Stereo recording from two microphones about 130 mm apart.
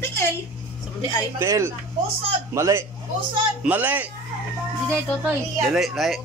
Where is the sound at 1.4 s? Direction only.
20° right (ahead or behind).